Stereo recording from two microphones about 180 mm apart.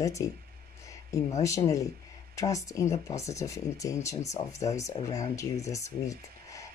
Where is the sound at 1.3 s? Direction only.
15° left (ahead or behind).